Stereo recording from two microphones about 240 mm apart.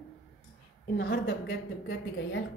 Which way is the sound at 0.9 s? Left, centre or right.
Left.